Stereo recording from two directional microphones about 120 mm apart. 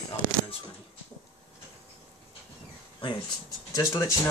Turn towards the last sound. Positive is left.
turn(degrees=25)  # may be behind; listen again after turning